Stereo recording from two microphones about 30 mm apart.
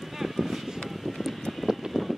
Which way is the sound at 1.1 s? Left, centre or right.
Centre.